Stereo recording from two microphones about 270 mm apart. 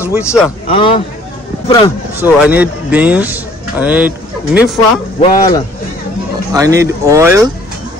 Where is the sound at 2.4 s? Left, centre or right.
Centre.